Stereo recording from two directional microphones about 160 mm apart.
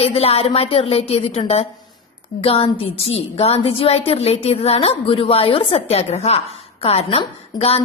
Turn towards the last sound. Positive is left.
turn(degrees=40)  # may be behind; listen again after turning